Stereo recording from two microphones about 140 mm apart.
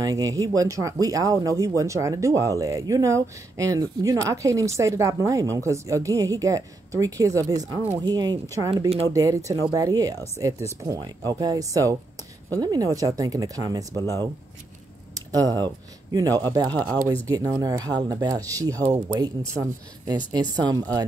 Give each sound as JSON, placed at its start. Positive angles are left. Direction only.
{"t": 0.0, "sound": "speech", "side_deg": -25}
{"t": 13.9, "sound": "speech", "side_deg": 20}
{"t": 15.1, "sound": "speech", "side_deg": -25}
{"t": 16.7, "sound": "speech", "side_deg": 10}
{"t": 17.3, "sound": "speech", "side_deg": -25}